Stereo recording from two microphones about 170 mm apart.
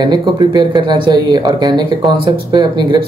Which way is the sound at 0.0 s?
25° right (ahead or behind).